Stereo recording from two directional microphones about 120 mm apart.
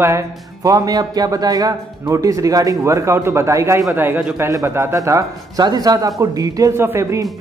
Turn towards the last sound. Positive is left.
turn(degrees=-25)  # may be behind; listen again after turning